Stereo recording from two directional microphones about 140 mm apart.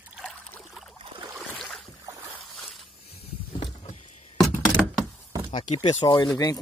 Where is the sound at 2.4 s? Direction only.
Centre (ahead or behind).